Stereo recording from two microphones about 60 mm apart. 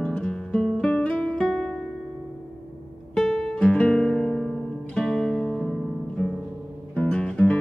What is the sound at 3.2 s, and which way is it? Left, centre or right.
Guitar, centre.